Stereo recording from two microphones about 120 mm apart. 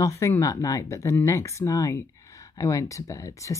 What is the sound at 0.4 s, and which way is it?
Speech, 30° left (ahead or behind).